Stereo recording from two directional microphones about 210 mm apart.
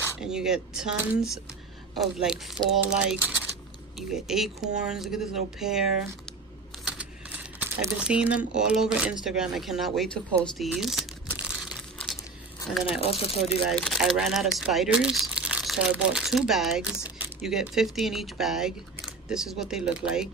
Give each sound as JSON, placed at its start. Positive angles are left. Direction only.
{"t": 0.2, "sound": "speech", "side_deg": -5}
{"t": 6.8, "sound": "typing", "side_deg": -5}
{"t": 8.5, "sound": "speech", "side_deg": -5}
{"t": 10.4, "sound": "crumpling", "side_deg": 0}
{"t": 13.0, "sound": "speech", "side_deg": 25}
{"t": 13.7, "sound": "speech", "side_deg": 0}